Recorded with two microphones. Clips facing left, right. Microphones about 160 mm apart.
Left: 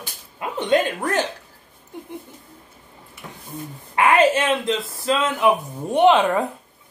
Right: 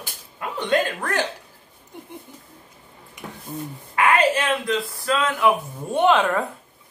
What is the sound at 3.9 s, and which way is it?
Speech, 25° left (ahead or behind).